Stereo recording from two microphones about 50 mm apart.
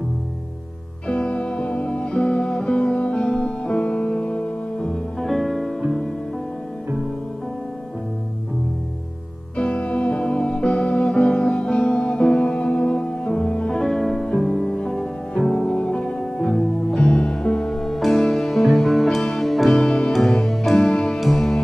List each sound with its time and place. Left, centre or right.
1.0 s music: left
5.2 s music: centre
9.6 s music: left; by 15.8 s centre
15.8 s music: centre
16.1 s music: centre
17.0 s music: left; by 19.7 s centre
19.7 s music: centre
20.1 s music: centre
20.7 s music: left